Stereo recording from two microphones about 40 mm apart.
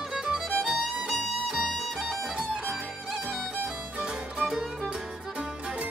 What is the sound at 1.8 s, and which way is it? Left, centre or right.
Music, centre.